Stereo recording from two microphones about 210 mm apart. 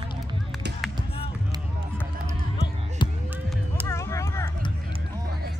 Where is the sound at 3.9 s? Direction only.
15° left (ahead or behind).